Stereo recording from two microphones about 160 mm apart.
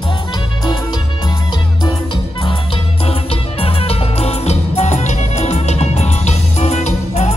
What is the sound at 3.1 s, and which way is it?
Music, 40° left (ahead or behind).